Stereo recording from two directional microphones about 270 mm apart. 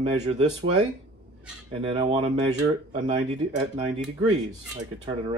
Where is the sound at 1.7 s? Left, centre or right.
Centre.